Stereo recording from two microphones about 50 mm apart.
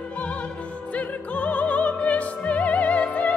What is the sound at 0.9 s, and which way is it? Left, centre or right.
Opera, left.